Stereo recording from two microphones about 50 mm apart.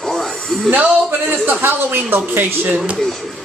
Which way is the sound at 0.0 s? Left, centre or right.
Centre.